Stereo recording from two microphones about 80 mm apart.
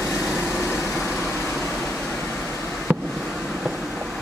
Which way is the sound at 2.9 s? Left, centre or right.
Centre.